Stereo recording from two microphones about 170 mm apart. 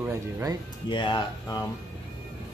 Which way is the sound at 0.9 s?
25° left (ahead or behind).